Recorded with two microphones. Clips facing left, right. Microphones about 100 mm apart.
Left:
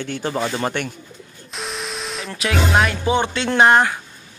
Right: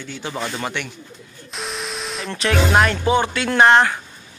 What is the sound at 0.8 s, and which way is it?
Speech, 45° left (ahead or behind).